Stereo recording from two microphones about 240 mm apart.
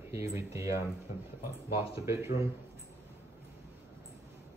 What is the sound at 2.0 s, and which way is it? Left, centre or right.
Speech, centre.